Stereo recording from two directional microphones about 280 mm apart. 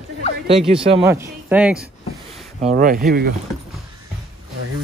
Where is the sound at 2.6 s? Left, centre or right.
Right.